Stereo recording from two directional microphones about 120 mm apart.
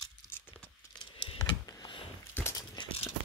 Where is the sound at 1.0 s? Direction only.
45° left (ahead or behind).